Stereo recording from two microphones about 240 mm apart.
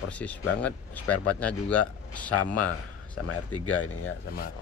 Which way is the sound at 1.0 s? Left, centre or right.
Left.